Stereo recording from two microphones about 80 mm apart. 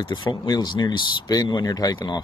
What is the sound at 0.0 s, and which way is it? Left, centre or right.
Speech, left.